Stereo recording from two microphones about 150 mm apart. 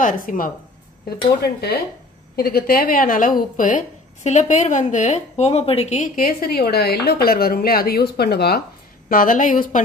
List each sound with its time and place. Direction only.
0.0 s speech: 65° left (ahead or behind)
1.1 s a woman's voice: 90° left
2.3 s speech: 90° left; by 6.0 s 45° left (ahead or behind)
6.1 s a woman's voice: 80° left
9.1 s speech: 65° left (ahead or behind)